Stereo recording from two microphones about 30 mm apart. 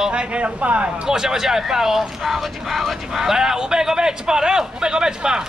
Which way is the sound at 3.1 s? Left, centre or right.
Centre.